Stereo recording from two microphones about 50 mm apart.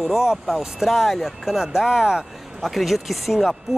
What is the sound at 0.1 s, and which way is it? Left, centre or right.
Speech, centre.